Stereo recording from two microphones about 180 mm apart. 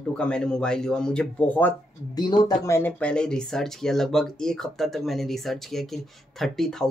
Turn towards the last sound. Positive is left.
turn(degrees=0)  # may be behind; listen again after turning